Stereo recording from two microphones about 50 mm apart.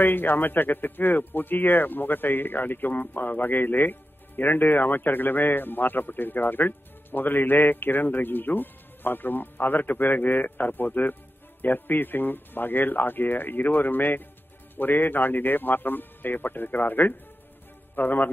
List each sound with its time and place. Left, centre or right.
0.0 s speech: left